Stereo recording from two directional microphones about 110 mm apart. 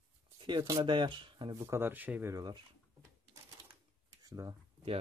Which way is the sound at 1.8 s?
15° right (ahead or behind).